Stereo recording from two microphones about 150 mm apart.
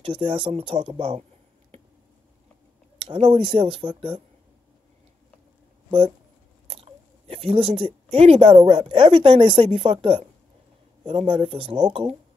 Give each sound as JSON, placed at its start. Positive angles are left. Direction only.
{"t": 0.0, "sound": "speech", "side_deg": -35}
{"t": 3.3, "sound": "speech", "side_deg": -35}
{"t": 5.9, "sound": "speech", "side_deg": -35}
{"t": 6.7, "sound": "chewing", "side_deg": -40}
{"t": 7.7, "sound": "speech", "side_deg": -40}